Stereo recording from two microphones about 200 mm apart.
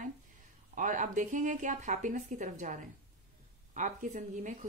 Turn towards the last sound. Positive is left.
turn(degrees=-40)  # may be behind; listen again after turning